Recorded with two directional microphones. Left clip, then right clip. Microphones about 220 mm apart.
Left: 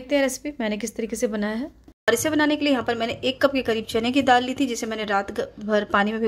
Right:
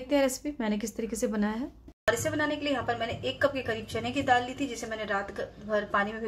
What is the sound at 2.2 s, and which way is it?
A woman's voice, 55° left (ahead or behind).